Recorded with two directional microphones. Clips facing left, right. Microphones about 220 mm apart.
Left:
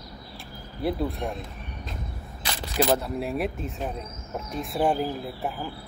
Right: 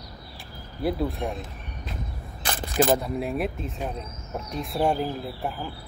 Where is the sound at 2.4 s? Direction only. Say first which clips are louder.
Right 2 dB; 50° right (ahead or behind).